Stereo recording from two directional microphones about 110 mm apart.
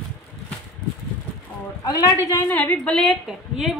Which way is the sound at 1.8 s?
35° left (ahead or behind).